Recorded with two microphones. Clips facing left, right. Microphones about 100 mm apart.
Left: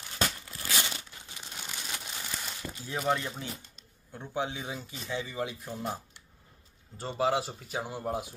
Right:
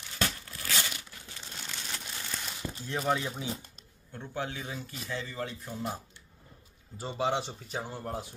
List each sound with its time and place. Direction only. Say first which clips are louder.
0.2 s crumpling: left 1 dB; 15° left (ahead or behind)
2.8 s speech: even; 5° left (ahead or behind)
4.1 s speech: left 3 dB; 15° left (ahead or behind)
4.6 s speech: left 1 dB; centre (ahead or behind)
5.1 s speech: left 3 dB; 15° left (ahead or behind)
7.0 s speech: left 2 dB; centre (ahead or behind)